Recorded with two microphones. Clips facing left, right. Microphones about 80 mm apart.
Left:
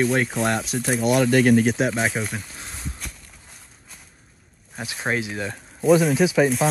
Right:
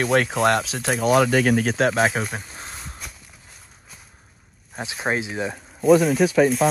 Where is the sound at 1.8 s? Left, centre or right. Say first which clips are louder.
Right 3 dB; right.